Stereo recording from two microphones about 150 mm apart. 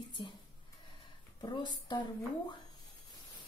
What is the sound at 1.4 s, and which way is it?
Speech, 30° left (ahead or behind).